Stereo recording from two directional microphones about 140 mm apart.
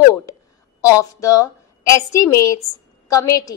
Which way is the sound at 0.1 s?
25° left (ahead or behind).